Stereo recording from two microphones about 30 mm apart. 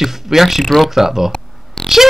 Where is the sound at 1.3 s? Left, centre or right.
Left.